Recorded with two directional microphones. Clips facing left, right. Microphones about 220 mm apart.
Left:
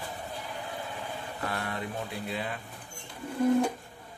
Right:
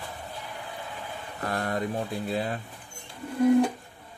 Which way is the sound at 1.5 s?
40° right (ahead or behind).